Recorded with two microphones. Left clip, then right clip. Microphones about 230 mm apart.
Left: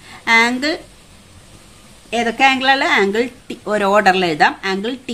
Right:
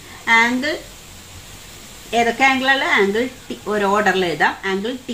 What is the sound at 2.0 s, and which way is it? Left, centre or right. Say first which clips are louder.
A woman's voice: left 1 dB; left.